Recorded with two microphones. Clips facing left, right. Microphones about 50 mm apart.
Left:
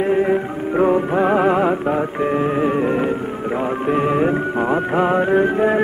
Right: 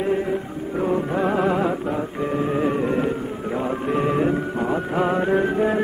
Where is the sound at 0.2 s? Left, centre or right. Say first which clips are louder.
Left 7 dB; left.